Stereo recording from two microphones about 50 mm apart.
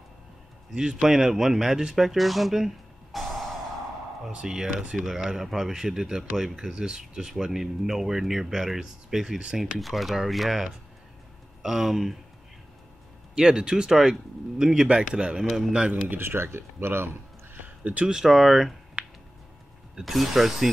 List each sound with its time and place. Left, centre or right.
0.7 s speech: centre
4.3 s speech: centre
13.3 s speech: centre
16.2 s speech: right
18.0 s speech: centre
19.0 s a sound: right
20.1 s speech: centre